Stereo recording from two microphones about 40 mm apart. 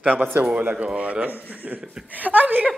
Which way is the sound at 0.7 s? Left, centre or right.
Right.